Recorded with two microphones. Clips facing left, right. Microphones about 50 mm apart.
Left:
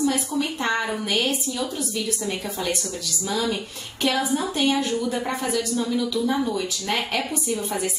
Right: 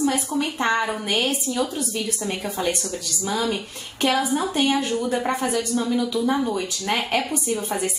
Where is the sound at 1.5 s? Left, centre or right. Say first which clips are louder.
Right 3 dB; centre.